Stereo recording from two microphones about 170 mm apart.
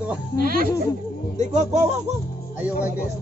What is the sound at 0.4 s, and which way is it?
Speech, 55° right (ahead or behind).